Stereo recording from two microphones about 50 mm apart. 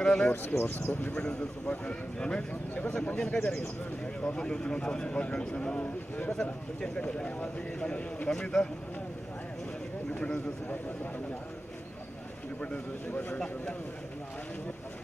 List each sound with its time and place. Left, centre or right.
0.0 s a sound: centre
0.3 s speech: left
1.1 s speech: left
10.1 s speech: left
12.5 s speech: left